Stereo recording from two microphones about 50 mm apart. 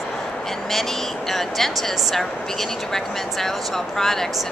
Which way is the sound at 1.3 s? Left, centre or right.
Centre.